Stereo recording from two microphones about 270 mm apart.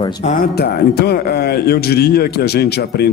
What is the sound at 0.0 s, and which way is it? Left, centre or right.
Speech, left.